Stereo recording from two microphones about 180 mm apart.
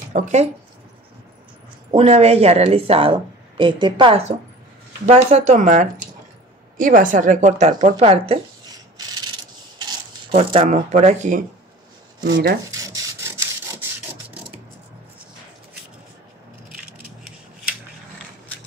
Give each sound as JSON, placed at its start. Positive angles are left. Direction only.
{"t": 0.1, "sound": "speech", "side_deg": -40}
{"t": 1.9, "sound": "a woman's voice", "side_deg": -35}
{"t": 8.9, "sound": "rub", "side_deg": -20}
{"t": 9.8, "sound": "mechanisms", "side_deg": -25}
{"t": 10.5, "sound": "speech", "side_deg": -40}
{"t": 12.7, "sound": "rub", "side_deg": -20}